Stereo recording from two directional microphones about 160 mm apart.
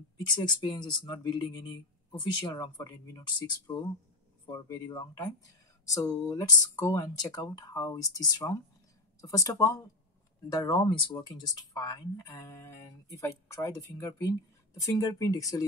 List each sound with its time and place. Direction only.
0.3 s speech: 25° left (ahead or behind)